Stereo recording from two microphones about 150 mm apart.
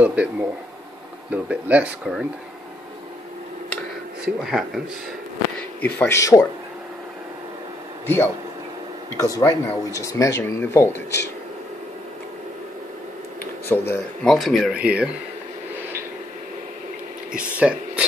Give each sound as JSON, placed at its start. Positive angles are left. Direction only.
{"t": 0.0, "sound": "speech", "side_deg": -10}
{"t": 4.2, "sound": "speech", "side_deg": -5}
{"t": 5.8, "sound": "speech", "side_deg": 10}
{"t": 9.4, "sound": "speech", "side_deg": 20}
{"t": 13.4, "sound": "a sound", "side_deg": 15}
{"t": 14.3, "sound": "speech", "side_deg": 0}
{"t": 17.3, "sound": "speech", "side_deg": -10}